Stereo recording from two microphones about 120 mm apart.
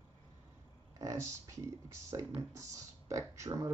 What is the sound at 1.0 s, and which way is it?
Speech, 25° right (ahead or behind).